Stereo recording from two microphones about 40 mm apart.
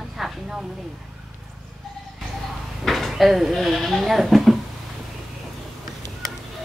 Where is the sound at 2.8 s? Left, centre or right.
Centre.